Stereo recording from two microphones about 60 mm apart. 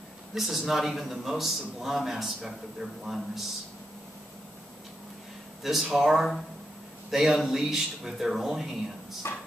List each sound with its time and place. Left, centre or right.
0.3 s a man's voice: centre
5.6 s a man's voice: centre
9.2 s speech: left